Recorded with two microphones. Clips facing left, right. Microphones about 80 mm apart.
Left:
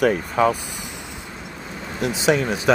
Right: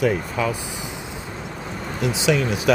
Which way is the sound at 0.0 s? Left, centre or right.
Left.